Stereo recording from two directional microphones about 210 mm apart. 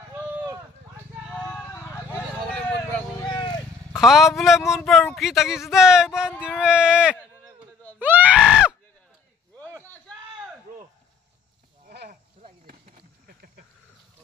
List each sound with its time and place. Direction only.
0.1 s a sound: 15° right (ahead or behind)
1.3 s vehicle: 5° left (ahead or behind)
3.2 s vehicle: 20° left (ahead or behind)
4.0 s speech: centre (ahead or behind)
8.0 s screaming: 10° right (ahead or behind)
11.9 s a sound: 50° right (ahead or behind)
12.4 s chop: 40° right (ahead or behind)